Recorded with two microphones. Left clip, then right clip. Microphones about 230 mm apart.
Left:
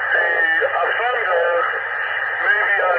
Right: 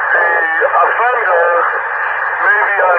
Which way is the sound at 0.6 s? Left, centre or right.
Right.